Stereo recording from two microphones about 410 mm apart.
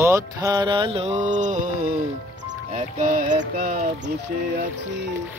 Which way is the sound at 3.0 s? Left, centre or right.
Centre.